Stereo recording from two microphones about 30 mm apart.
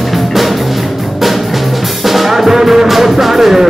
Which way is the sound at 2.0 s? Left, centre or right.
Centre.